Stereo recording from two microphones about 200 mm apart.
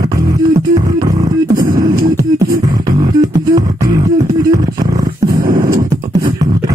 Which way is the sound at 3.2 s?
15° right (ahead or behind).